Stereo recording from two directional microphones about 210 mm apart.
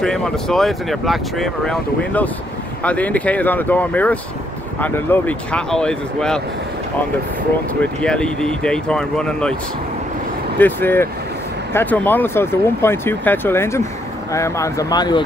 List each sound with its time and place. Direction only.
0.0 s speech: centre (ahead or behind)
8.0 s speech: 5° left (ahead or behind)
10.6 s speech: 10° left (ahead or behind)